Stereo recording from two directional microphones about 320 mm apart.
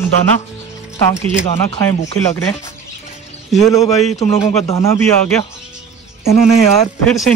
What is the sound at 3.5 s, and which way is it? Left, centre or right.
Speech, centre.